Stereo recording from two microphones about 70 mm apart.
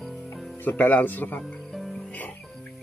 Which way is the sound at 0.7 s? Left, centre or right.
Left.